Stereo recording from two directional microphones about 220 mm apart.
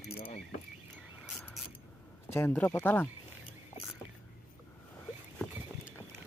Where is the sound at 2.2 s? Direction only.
10° left (ahead or behind).